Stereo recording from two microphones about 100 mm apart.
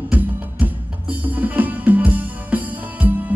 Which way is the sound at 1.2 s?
15° right (ahead or behind).